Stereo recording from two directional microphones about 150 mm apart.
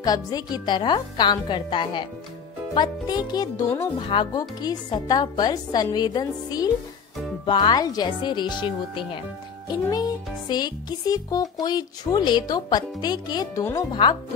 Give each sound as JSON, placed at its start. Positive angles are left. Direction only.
{"t": 0.0, "sound": "a woman's voice", "side_deg": 25}